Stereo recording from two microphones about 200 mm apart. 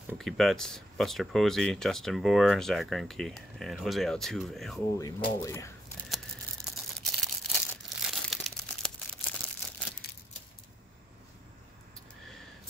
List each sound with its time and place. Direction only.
0.2 s speech: centre (ahead or behind)
4.9 s speech: 15° left (ahead or behind)
6.0 s a sound: centre (ahead or behind)